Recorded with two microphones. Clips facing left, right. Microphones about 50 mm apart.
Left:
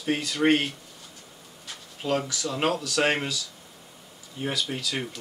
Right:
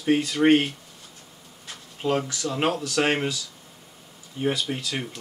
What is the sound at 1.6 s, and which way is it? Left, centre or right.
Insect, centre.